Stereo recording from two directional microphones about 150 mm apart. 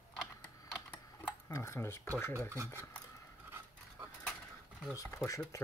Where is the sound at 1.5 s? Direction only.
20° left (ahead or behind).